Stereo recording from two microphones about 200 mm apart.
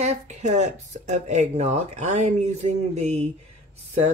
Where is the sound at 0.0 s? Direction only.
35° right (ahead or behind).